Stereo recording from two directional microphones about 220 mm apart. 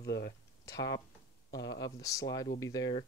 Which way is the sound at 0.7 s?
15° left (ahead or behind).